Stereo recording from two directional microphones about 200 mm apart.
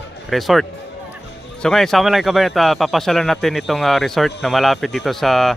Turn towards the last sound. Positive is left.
turn(degrees=0)  # may be behind; listen again after turning